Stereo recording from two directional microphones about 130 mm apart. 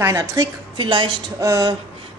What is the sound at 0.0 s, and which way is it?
Speech, 25° right (ahead or behind).